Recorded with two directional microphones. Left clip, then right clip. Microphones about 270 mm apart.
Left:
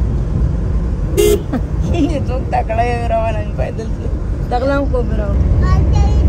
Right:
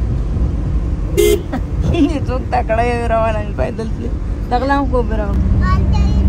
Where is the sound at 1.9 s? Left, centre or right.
Centre.